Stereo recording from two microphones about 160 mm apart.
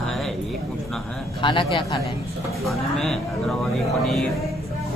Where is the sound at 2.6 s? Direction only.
Centre (ahead or behind).